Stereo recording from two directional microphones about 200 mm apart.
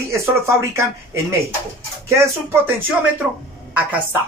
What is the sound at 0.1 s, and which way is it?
Speech, 15° right (ahead or behind).